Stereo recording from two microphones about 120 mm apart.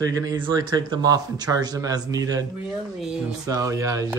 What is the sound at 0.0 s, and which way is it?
Speech, 30° right (ahead or behind).